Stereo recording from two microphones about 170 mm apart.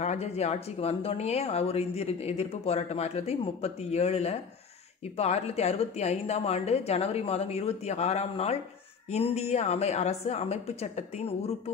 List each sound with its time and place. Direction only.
0.0 s speech: 40° left (ahead or behind)